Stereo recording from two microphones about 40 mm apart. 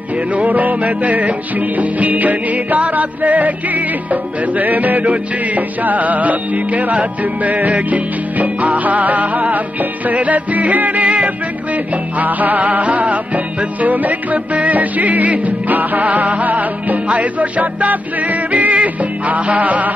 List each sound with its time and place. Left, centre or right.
0.3 s music: right